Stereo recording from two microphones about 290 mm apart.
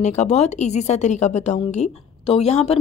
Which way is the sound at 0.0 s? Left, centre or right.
Left.